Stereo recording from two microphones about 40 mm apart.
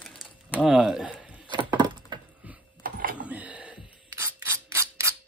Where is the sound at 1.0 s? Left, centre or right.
Right.